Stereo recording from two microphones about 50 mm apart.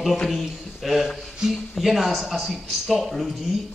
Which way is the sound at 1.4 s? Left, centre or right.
Centre.